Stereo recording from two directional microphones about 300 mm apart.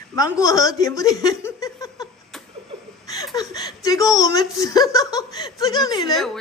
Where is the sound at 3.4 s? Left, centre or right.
Centre.